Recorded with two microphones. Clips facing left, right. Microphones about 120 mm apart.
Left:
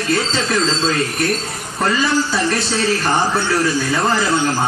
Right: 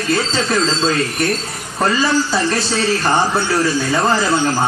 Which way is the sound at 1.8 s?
30° right (ahead or behind).